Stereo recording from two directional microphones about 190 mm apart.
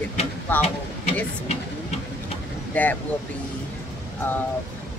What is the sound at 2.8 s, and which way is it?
Speech, 5° left (ahead or behind).